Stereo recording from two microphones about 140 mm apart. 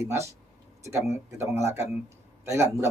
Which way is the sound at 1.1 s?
20° right (ahead or behind).